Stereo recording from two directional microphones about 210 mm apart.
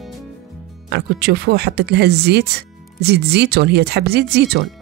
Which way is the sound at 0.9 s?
50° right (ahead or behind).